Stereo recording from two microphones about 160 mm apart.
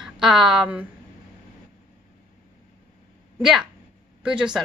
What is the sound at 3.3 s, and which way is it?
Speech, centre (ahead or behind).